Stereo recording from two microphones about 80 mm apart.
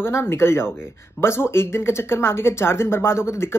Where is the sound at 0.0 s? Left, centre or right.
Left.